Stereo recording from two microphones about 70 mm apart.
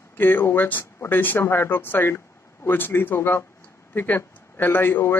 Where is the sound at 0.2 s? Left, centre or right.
Left.